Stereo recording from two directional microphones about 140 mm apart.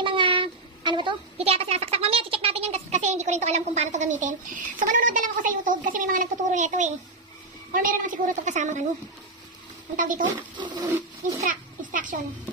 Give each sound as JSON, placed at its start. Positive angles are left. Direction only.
{"t": 0.0, "sound": "a sound", "side_deg": -35}
{"t": 7.7, "sound": "a woman's voice", "side_deg": -75}
{"t": 9.9, "sound": "a woman's voice", "side_deg": -70}
{"t": 11.4, "sound": "children playing", "side_deg": -70}